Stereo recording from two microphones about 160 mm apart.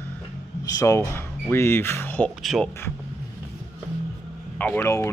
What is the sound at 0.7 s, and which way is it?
Speech, 20° left (ahead or behind).